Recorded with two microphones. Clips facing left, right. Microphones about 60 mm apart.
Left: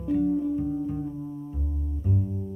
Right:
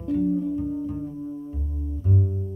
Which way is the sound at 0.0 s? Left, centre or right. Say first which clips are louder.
Right 1 dB; centre.